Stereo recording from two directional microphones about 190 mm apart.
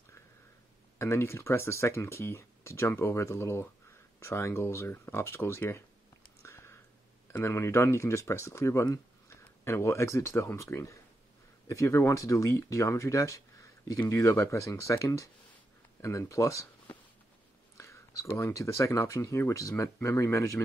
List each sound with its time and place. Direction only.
0.9 s speech: 15° left (ahead or behind)
6.4 s a sound: 15° left (ahead or behind)
7.3 s speech: 15° left (ahead or behind)